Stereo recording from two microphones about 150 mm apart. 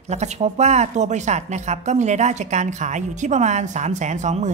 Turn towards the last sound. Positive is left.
turn(degrees=-50)  # may be behind; listen again after turning